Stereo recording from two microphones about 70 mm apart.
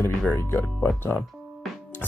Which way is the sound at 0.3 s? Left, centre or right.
Left.